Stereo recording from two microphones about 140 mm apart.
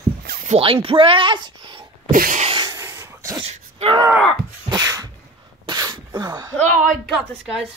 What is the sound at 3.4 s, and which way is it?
Wail, 45° right (ahead or behind).